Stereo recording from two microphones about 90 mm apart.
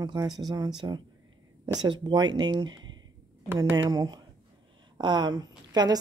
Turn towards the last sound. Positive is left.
turn(degrees=-50)  # may be behind; listen again after turning